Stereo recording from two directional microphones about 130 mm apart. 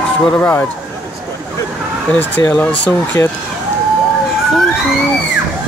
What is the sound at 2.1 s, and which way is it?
Speech, 10° left (ahead or behind).